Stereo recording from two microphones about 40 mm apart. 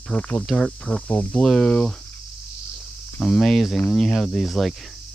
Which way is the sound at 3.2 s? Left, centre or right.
Centre.